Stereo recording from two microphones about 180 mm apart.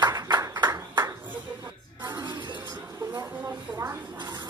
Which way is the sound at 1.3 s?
10° right (ahead or behind).